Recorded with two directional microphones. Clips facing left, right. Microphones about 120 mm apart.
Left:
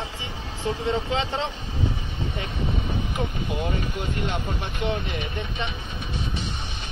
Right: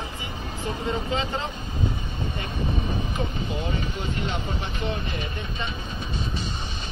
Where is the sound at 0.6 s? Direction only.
90° left.